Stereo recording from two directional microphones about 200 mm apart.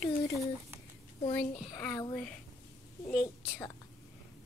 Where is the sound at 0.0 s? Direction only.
Centre (ahead or behind).